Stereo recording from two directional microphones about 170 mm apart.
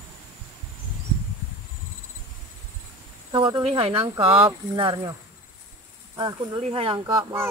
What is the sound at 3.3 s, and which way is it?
Speech, 30° right (ahead or behind).